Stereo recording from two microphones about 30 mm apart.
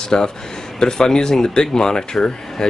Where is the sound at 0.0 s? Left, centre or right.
Left.